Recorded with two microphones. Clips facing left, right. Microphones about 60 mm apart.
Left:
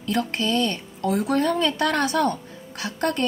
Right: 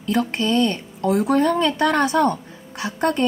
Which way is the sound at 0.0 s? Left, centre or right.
Centre.